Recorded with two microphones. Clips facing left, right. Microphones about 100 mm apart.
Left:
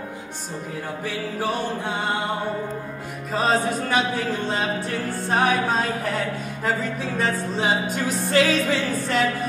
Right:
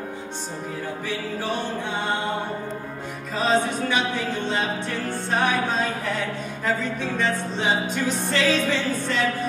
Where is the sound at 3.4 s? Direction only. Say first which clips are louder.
Even; 45° left (ahead or behind).